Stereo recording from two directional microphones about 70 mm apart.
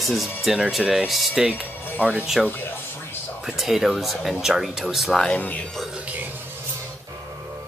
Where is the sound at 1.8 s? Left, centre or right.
Left.